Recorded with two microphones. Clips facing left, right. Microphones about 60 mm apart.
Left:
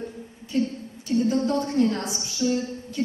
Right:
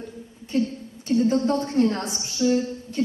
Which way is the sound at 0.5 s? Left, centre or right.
Right.